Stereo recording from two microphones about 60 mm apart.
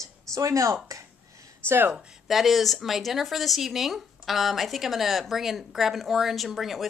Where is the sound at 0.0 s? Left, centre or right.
Right.